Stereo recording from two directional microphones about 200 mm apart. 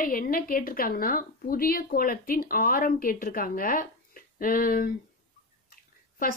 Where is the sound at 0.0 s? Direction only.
45° left (ahead or behind).